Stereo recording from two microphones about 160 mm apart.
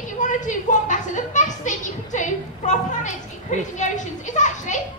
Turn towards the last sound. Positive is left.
turn(degrees=50)  # may be behind; listen again after turning